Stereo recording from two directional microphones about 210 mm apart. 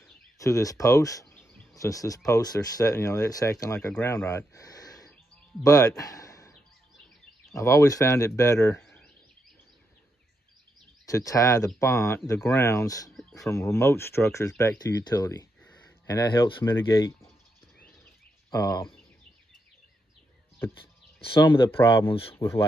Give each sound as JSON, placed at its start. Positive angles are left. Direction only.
{"t": 0.4, "sound": "speech", "side_deg": 15}
{"t": 7.5, "sound": "speech", "side_deg": 15}
{"t": 8.8, "sound": "a sound", "side_deg": 5}
{"t": 11.1, "sound": "speech", "side_deg": 15}
{"t": 13.1, "sound": "a sound", "side_deg": 0}
{"t": 13.5, "sound": "speech", "side_deg": 15}
{"t": 17.7, "sound": "a sound", "side_deg": 5}
{"t": 21.2, "sound": "speech", "side_deg": 25}
{"t": 22.3, "sound": "speech", "side_deg": 10}